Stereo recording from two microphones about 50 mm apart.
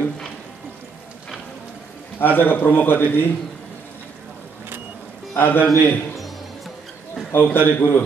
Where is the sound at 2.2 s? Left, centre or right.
Left.